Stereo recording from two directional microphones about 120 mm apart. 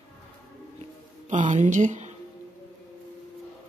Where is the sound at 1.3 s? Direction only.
85° right.